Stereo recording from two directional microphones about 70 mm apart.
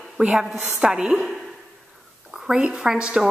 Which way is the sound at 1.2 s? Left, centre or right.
Centre.